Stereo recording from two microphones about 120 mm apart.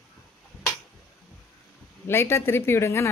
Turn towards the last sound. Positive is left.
turn(degrees=20)  # may be behind; listen again after turning